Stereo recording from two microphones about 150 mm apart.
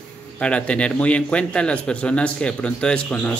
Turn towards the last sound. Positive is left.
turn(degrees=5)  # may be behind; listen again after turning